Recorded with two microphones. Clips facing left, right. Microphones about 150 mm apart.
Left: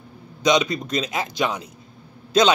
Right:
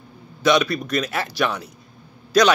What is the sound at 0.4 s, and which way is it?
Speech, 20° left (ahead or behind).